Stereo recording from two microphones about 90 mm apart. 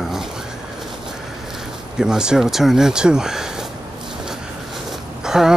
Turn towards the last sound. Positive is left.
turn(degrees=-5)  # may be behind; listen again after turning